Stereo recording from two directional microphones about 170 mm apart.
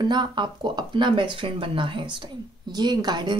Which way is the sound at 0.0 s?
25° right (ahead or behind).